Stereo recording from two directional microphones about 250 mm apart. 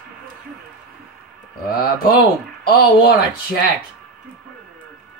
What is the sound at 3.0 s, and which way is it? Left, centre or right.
Speech, left.